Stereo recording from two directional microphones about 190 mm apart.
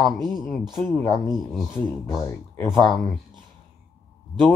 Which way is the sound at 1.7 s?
15° left (ahead or behind).